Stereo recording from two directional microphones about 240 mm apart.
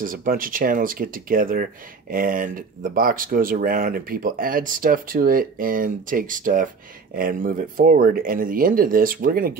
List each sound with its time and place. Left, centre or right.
0.0 s speech: right